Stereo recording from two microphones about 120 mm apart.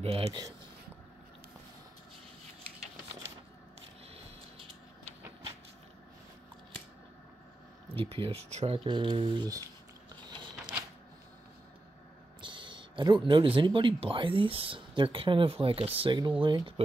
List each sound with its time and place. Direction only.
0.0 s speech: 55° right (ahead or behind)
7.9 s speech: 50° right (ahead or behind)
8.8 s speech: 40° right (ahead or behind)
10.2 s a sound: 40° right (ahead or behind)
12.4 s a sound: 45° right (ahead or behind)
13.6 s speech: 45° right (ahead or behind)